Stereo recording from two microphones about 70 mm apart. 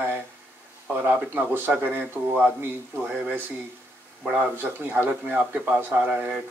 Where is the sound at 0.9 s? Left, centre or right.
Right.